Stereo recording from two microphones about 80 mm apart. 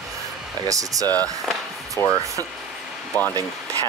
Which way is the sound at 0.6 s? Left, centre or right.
Right.